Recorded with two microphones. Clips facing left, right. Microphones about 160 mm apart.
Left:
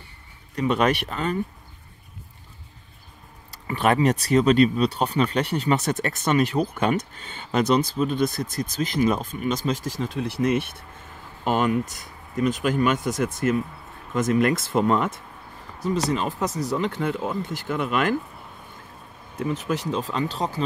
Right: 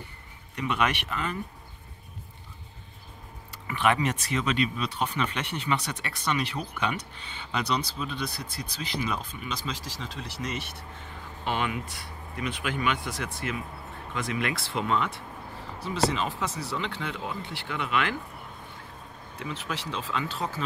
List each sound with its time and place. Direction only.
0.6 s speech: 35° left (ahead or behind)
3.5 s speech: 40° left (ahead or behind)
19.3 s speech: 45° left (ahead or behind)